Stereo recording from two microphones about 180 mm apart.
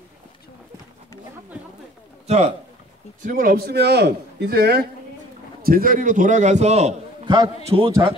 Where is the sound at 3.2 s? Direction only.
50° right (ahead or behind).